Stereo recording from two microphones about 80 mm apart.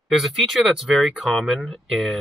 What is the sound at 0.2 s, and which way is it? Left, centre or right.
Speech, centre.